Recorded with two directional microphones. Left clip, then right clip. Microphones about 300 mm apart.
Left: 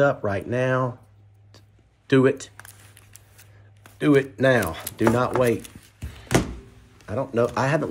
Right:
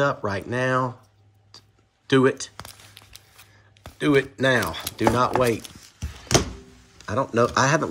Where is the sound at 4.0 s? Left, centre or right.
Centre.